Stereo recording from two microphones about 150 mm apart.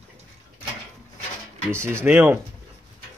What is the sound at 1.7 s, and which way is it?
Speech, 15° right (ahead or behind).